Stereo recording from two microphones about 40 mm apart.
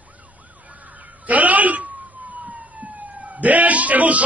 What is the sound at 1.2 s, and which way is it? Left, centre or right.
Speech, right.